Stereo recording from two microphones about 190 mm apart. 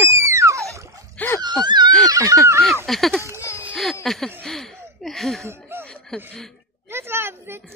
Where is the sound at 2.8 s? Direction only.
Centre (ahead or behind).